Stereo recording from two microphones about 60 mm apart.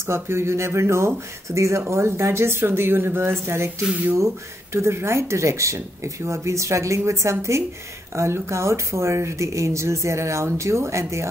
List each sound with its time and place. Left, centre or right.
0.0 s speech: right
4.7 s speech: right